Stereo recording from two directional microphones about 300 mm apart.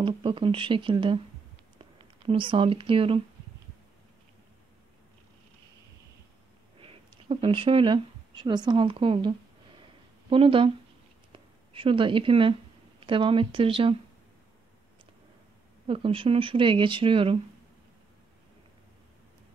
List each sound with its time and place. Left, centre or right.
0.0 s speech: centre
6.8 s speech: centre
10.3 s speech: centre
15.9 s speech: centre